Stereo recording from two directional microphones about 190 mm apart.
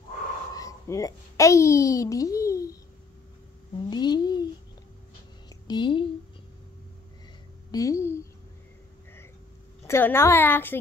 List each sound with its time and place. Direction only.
0.6 s a child's voice: 15° left (ahead or behind)
3.9 s a child's voice: 20° left (ahead or behind)
5.7 s a child's voice: 25° left (ahead or behind)
7.7 s a woman's voice: 15° left (ahead or behind)
9.8 s a woman's voice: 10° left (ahead or behind)